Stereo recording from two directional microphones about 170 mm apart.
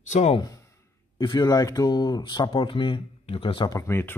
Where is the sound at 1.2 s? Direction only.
25° left (ahead or behind).